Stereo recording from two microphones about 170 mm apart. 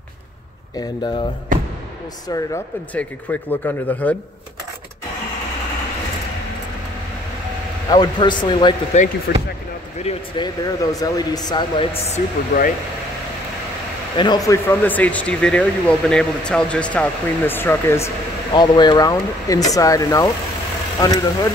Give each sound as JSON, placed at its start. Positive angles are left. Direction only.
{"t": 0.7, "sound": "speech", "side_deg": 25}
{"t": 2.2, "sound": "speech", "side_deg": 20}
{"t": 2.9, "sound": "speech", "side_deg": 10}
{"t": 7.9, "sound": "speech", "side_deg": 25}
{"t": 8.9, "sound": "speech", "side_deg": 45}
{"t": 10.4, "sound": "speech", "side_deg": 20}
{"t": 14.1, "sound": "speech", "side_deg": 25}